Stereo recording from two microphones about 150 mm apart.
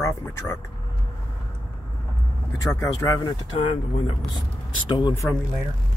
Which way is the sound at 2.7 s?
25° left (ahead or behind).